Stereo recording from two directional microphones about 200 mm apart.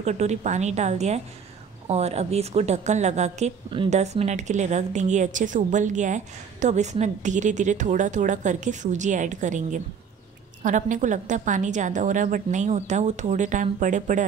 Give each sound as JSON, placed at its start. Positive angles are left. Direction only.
{"t": 0.0, "sound": "a woman's voice", "side_deg": -35}